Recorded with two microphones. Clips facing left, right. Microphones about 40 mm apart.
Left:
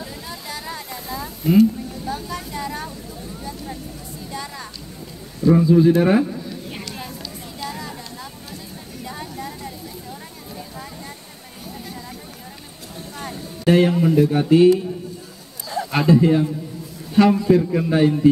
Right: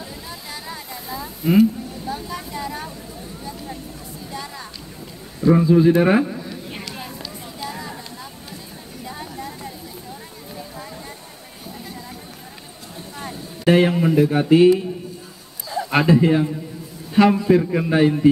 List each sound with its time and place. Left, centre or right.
0.0 s a sound: centre
0.7 s vehicle: centre
2.5 s speech: centre
4.3 s music: centre
5.4 s a sound: centre
13.7 s a man's voice: centre
15.9 s a man's voice: centre